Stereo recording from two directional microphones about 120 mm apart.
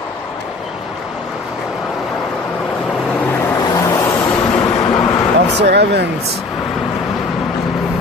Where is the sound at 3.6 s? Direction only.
30° left (ahead or behind).